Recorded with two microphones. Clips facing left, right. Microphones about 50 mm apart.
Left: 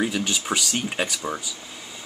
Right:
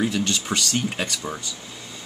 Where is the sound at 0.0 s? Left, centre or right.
Centre.